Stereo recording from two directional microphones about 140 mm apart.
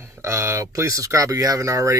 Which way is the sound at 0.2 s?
20° right (ahead or behind).